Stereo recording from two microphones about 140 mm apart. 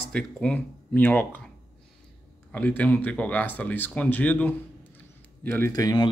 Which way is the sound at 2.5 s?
10° left (ahead or behind).